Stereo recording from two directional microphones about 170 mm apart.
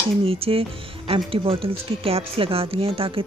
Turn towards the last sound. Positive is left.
turn(degrees=-35)  # may be behind; listen again after turning